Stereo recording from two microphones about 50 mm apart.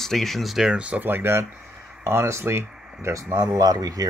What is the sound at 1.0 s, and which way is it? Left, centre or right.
Speech, right.